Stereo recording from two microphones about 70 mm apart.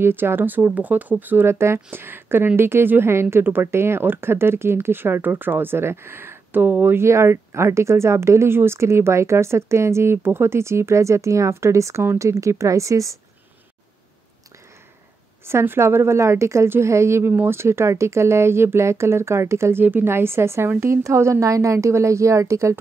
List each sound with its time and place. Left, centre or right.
0.0 s speech: right
15.4 s speech: right